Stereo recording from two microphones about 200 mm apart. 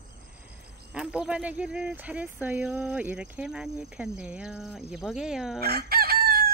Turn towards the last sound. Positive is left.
turn(degrees=-50)  # may be behind; listen again after turning